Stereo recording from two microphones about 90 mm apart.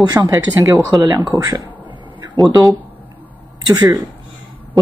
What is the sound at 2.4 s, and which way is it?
A man's voice, 40° right (ahead or behind).